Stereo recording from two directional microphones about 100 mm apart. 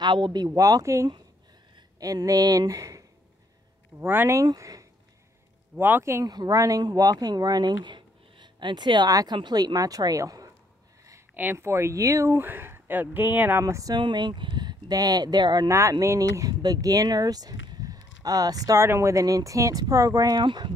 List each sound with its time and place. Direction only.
0.0 s speech: 45° right (ahead or behind)
0.6 s speech: 35° right (ahead or behind)
4.0 s speech: 20° right (ahead or behind)
4.4 s speech: 35° right (ahead or behind)
5.8 s speech: 20° right (ahead or behind)
6.2 s speech: 45° right (ahead or behind)
11.3 s speech: 20° right (ahead or behind)
13.9 s speech: 50° right (ahead or behind)
15.7 s speech: 30° right (ahead or behind)
18.8 s speech: 25° right (ahead or behind)
20.4 s speech: 55° right (ahead or behind)